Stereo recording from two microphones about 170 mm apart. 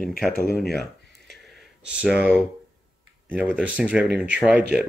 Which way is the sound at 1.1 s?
80° right.